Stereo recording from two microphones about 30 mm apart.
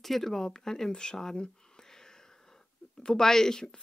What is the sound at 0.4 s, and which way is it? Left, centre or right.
Speech, centre.